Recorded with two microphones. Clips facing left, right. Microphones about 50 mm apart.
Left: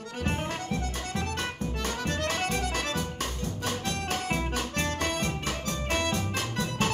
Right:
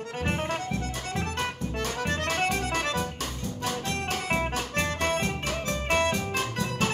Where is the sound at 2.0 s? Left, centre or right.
Right.